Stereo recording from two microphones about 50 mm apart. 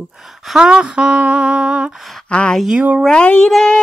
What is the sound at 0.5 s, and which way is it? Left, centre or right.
Humming, centre.